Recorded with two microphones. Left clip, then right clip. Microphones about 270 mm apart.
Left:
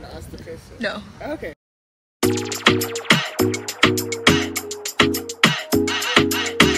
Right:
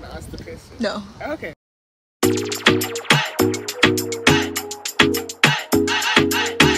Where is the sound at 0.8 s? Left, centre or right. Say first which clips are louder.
Right 2 dB; right.